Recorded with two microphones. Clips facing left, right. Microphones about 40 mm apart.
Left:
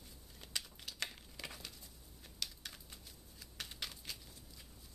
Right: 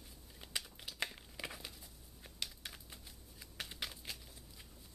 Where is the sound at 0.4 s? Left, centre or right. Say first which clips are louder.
Right 1 dB; centre.